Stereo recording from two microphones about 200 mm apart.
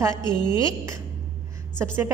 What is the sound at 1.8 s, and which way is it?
Speech, 10° right (ahead or behind).